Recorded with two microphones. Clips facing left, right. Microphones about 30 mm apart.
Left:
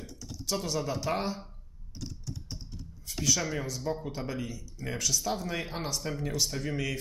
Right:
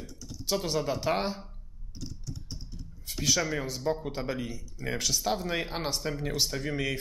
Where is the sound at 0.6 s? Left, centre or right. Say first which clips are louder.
Right 2 dB; right.